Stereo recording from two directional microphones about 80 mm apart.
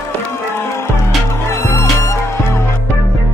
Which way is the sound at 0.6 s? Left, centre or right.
Left.